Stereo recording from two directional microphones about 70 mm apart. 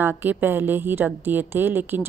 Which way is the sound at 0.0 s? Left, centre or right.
Right.